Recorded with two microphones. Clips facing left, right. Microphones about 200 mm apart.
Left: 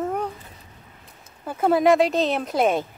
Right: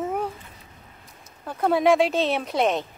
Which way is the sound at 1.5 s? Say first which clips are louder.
Left 2 dB; centre (ahead or behind).